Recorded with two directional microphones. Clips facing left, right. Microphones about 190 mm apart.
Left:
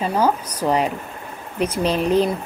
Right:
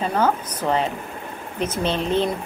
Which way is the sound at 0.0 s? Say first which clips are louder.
Left 1 dB; 10° left (ahead or behind).